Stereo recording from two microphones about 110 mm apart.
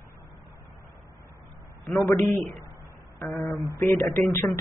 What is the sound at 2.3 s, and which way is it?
Speech, 25° left (ahead or behind).